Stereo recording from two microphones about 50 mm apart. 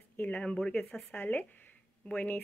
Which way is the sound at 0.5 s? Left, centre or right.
Centre.